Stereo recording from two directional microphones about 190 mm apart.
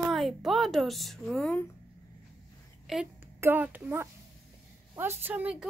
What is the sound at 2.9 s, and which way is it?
A woman's voice, centre (ahead or behind).